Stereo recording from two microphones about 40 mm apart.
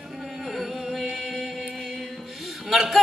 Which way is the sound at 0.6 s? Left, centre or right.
Centre.